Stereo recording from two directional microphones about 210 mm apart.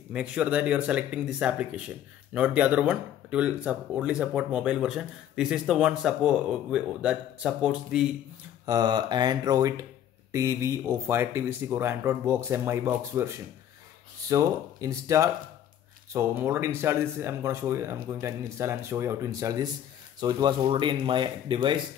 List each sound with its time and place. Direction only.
0.1 s speech: 5° right (ahead or behind)
8.6 s speech: 20° right (ahead or behind)